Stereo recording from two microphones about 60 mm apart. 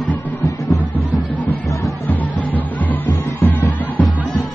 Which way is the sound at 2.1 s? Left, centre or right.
Left.